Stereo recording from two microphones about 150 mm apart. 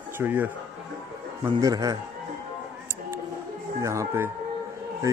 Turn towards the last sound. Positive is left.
turn(degrees=-20)  # may be behind; listen again after turning